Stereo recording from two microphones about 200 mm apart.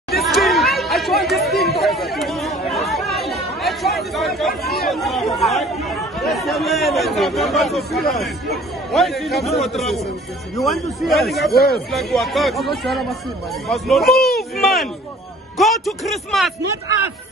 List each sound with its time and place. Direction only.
0.1 s chatter: centre (ahead or behind)
6.2 s speech: centre (ahead or behind)
11.5 s speech: 50° left (ahead or behind)
11.9 s a man's voice: centre (ahead or behind)